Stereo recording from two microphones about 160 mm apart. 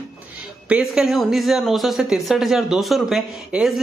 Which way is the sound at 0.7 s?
5° right (ahead or behind).